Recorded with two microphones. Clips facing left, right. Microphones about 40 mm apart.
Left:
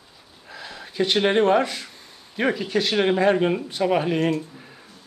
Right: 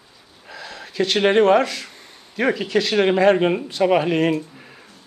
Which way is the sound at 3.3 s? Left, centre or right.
Centre.